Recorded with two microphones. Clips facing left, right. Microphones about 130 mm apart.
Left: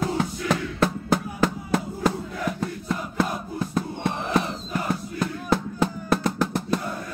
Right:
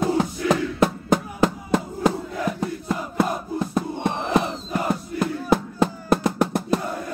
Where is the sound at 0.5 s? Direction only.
20° right (ahead or behind).